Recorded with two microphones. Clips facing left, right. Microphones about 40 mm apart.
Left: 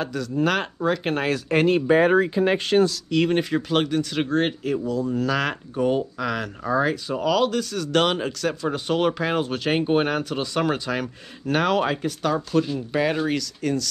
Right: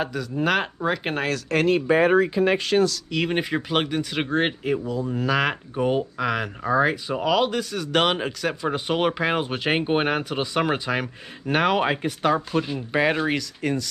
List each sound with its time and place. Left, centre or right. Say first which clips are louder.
0.0 s speech: left 1 dB; centre
1.5 s speech: left 2 dB; centre
2.3 s speech: even; right
3.1 s speech: left 3 dB; centre